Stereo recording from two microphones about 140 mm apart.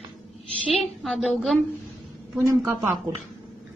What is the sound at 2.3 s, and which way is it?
Speech, 20° right (ahead or behind).